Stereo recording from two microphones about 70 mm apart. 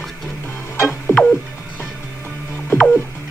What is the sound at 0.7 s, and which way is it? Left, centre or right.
Music, left.